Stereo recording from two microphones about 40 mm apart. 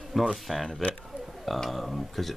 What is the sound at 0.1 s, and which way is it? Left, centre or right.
Speech, centre.